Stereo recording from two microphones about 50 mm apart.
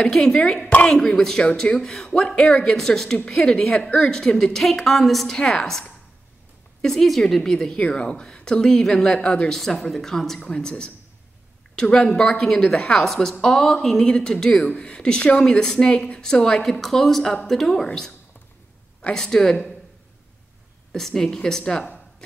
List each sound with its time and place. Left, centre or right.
0.0 s a woman's voice: centre
5.3 s a woman's voice: centre
9.5 s a woman's voice: centre
14.7 s a woman's voice: left
16.8 s a woman's voice: centre
19.1 s a woman's voice: centre
20.9 s a woman's voice: centre